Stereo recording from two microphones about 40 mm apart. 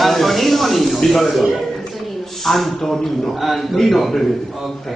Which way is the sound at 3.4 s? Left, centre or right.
Centre.